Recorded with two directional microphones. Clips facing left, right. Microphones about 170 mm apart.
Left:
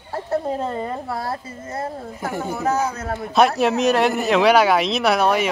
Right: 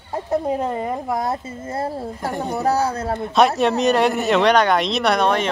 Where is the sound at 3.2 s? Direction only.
Centre (ahead or behind).